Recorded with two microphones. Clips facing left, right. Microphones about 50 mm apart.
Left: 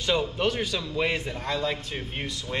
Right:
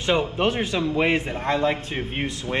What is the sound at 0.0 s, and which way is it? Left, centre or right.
A man's voice, right.